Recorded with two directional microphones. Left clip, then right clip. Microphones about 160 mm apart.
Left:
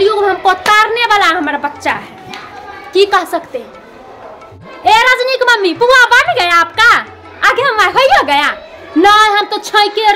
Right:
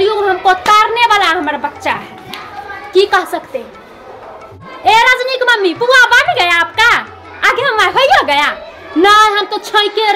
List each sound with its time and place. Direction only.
0.0 s a sound: 30° left (ahead or behind)
2.9 s a child's voice: 30° left (ahead or behind)
4.8 s a child's voice: 25° left (ahead or behind)